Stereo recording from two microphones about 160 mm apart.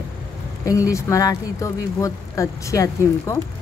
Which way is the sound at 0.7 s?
20° left (ahead or behind).